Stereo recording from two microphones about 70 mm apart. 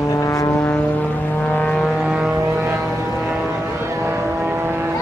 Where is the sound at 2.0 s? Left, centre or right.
Centre.